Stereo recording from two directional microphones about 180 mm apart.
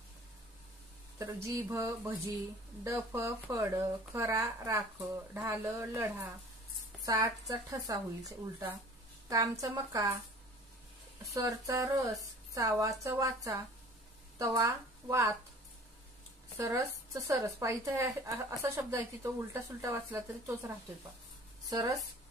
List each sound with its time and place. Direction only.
1.1 s a woman's voice: 15° right (ahead or behind)
11.3 s a woman's voice: 20° right (ahead or behind)
16.5 s a woman's voice: 15° right (ahead or behind)